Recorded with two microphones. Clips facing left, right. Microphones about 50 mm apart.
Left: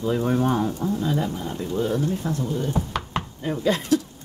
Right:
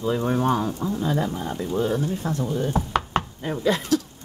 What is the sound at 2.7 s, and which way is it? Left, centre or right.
Chopping, right.